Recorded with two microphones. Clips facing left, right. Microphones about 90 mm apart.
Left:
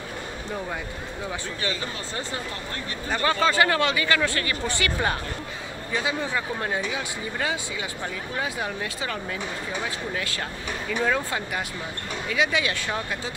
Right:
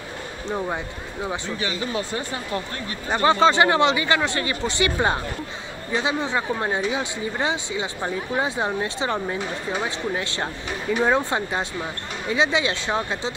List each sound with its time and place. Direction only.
1.3 s speech: 20° right (ahead or behind)
3.1 s speech: 25° right (ahead or behind)